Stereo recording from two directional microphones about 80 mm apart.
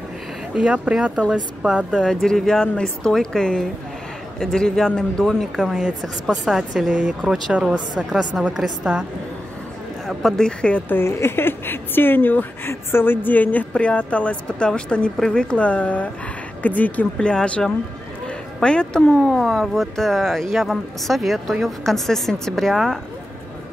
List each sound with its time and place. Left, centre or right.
0.6 s speech: centre
2.0 s speech: centre
8.5 s speech: centre
10.0 s speech: centre
10.9 s a woman's voice: left; by 22.9 s centre